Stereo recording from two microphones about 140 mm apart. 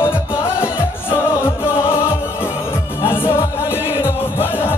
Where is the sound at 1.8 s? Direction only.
15° left (ahead or behind).